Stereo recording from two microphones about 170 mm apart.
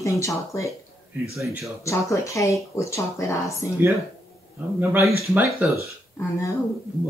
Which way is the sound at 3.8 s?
10° right (ahead or behind).